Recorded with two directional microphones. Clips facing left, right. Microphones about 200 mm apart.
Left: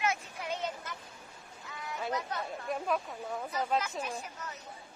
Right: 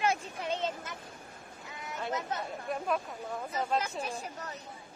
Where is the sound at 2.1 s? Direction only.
25° right (ahead or behind).